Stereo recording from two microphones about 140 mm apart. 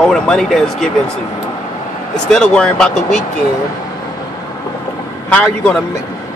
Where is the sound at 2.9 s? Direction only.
60° left (ahead or behind).